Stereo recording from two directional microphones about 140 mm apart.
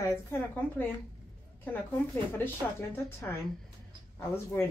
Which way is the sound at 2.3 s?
15° left (ahead or behind).